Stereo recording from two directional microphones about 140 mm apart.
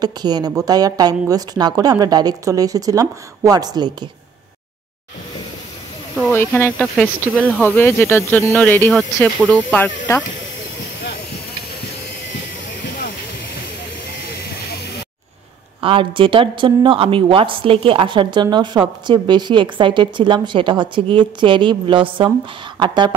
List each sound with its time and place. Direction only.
0.0 s a woman's voice: 30° right (ahead or behind)
6.3 s speech: 10° left (ahead or behind)
15.8 s speech: 40° right (ahead or behind)